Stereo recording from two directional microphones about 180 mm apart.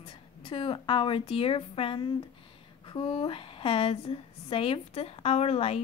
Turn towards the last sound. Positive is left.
turn(degrees=35)  # may be behind; listen again after turning